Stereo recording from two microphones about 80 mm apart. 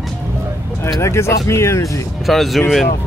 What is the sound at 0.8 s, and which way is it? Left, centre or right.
Speech, left.